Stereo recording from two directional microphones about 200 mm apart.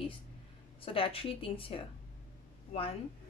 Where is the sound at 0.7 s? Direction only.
25° left (ahead or behind).